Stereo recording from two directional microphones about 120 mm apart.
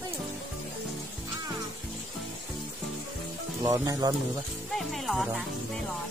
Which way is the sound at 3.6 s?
30° right (ahead or behind).